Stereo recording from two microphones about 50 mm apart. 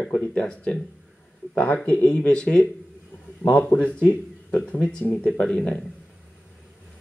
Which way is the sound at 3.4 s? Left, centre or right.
Left.